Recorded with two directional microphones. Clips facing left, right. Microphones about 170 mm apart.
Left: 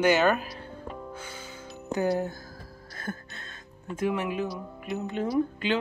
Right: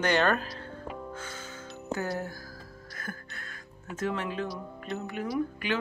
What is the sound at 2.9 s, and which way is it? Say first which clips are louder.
Music: left 5 dB; 25° left (ahead or behind).